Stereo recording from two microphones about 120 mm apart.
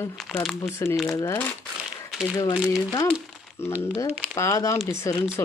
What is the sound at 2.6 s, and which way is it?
Speech, 30° left (ahead or behind).